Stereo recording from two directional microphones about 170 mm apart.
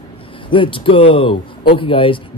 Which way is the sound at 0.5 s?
30° left (ahead or behind).